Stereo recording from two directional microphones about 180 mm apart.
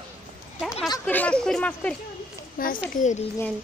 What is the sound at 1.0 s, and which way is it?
Speech, 10° left (ahead or behind).